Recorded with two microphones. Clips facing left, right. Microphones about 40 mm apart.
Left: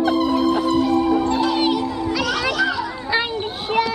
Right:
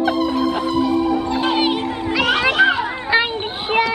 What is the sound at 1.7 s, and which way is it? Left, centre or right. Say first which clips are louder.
Children playing: even; right.